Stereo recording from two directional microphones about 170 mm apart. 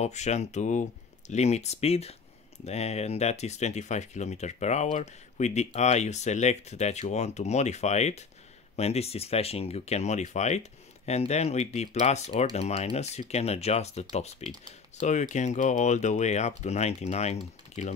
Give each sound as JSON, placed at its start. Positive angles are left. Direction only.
{"t": 0.0, "sound": "speech", "side_deg": 40}